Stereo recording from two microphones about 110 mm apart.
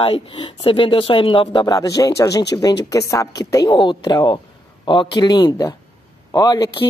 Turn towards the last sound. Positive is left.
turn(degrees=40)  # may be behind; listen again after turning